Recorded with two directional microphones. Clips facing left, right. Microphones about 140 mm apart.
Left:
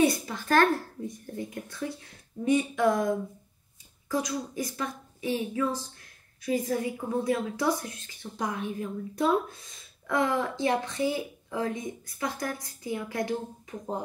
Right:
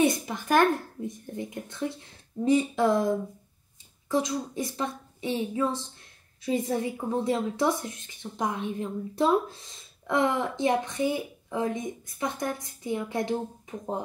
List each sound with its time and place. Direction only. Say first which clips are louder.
0.0 s a child's voice: even; 20° right (ahead or behind)
4.1 s a woman's voice: right 3 dB; 25° right (ahead or behind)